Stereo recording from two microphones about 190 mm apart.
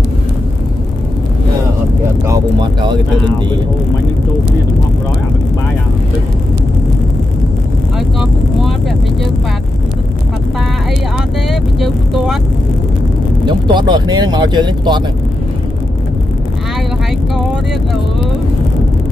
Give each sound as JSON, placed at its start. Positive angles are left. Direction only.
{"t": 2.2, "sound": "speech", "side_deg": -20}
{"t": 8.2, "sound": "speech", "side_deg": 0}
{"t": 11.8, "sound": "speech", "side_deg": 0}
{"t": 13.5, "sound": "speech", "side_deg": -25}